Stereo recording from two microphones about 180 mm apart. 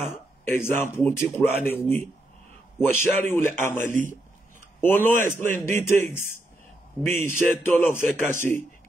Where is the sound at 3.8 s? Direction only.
45° right (ahead or behind).